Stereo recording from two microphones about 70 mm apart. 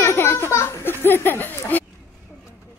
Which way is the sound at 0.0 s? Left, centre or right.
Left.